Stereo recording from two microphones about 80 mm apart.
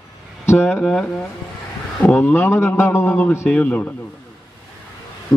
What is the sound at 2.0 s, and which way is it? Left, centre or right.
Speech, left.